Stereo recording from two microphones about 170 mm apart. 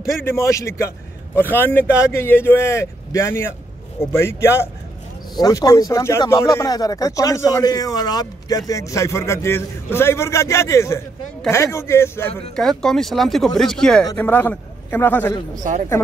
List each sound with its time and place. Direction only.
0.2 s a man's voice: 15° left (ahead or behind)
12.5 s a man's voice: 5° left (ahead or behind)
15.6 s speech: 50° right (ahead or behind)